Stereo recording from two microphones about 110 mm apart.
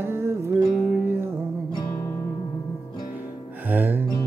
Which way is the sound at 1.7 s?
35° left (ahead or behind).